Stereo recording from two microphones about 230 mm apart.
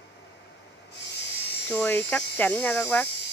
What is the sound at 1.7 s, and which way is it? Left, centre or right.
Speech, centre.